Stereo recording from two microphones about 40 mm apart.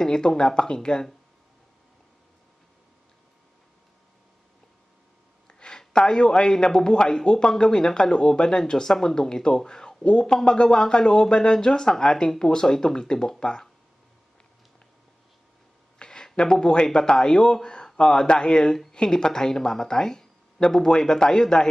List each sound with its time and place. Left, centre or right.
0.0 s speech: centre
5.5 s speech: left
16.0 s speech: centre